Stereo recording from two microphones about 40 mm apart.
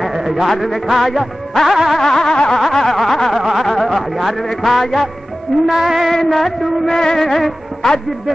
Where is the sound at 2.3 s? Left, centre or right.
Left.